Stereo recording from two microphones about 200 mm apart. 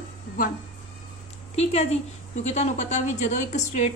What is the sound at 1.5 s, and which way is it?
A woman's voice, 30° left (ahead or behind).